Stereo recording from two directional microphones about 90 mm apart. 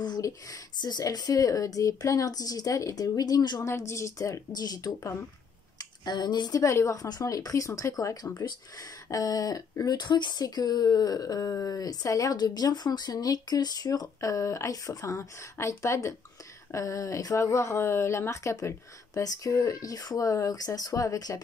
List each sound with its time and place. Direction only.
0.2 s speech: 35° left (ahead or behind)
0.7 s speech: 50° left (ahead or behind)
6.6 s speech: 35° left (ahead or behind)